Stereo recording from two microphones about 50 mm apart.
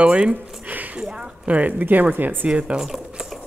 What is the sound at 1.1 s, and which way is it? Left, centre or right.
Speech, right.